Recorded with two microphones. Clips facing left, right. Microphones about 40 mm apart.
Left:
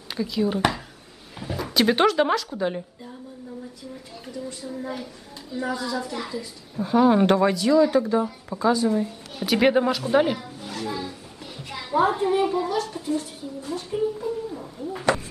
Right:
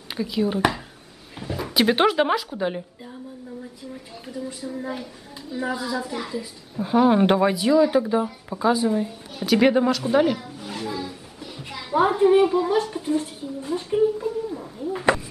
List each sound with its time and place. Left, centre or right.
0.1 s a woman's voice: centre
4.3 s a woman's voice: centre
10.9 s music: centre
11.9 s a sound: centre
12.6 s speech: right
14.2 s a sound: centre